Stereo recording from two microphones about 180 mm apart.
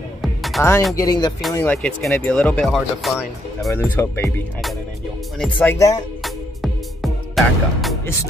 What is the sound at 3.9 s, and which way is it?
Speech, 10° left (ahead or behind).